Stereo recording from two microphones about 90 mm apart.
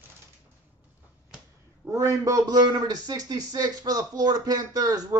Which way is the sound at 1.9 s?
40° right (ahead or behind).